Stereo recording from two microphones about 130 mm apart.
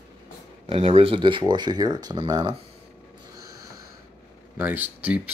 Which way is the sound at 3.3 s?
25° right (ahead or behind).